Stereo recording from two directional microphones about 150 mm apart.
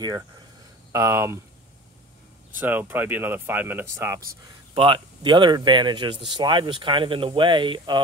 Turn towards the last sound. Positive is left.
turn(degrees=-30)  # may be behind; listen again after turning